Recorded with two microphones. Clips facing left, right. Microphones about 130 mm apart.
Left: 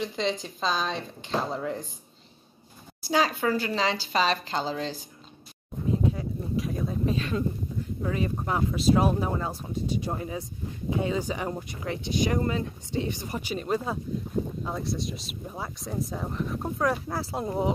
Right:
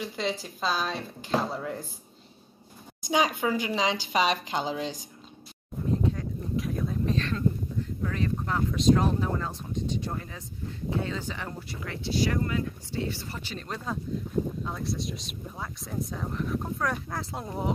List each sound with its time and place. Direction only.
0.0 s speech: 5° right (ahead or behind)
3.0 s speech: 15° right (ahead or behind)
6.1 s a sound: centre (ahead or behind)
8.1 s speech: 10° left (ahead or behind)